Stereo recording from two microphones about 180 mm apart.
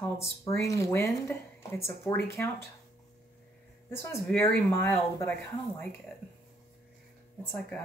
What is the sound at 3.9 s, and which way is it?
Speech, 15° left (ahead or behind).